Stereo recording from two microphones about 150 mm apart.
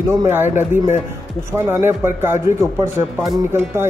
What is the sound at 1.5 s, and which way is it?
Speech, 15° right (ahead or behind).